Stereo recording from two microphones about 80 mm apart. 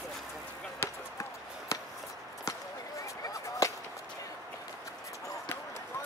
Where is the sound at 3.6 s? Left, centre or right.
Left.